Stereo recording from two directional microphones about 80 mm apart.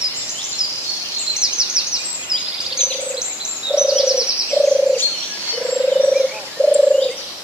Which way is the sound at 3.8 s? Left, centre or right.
Centre.